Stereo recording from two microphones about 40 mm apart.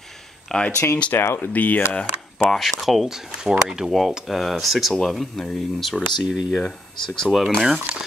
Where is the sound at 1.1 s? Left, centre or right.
Left.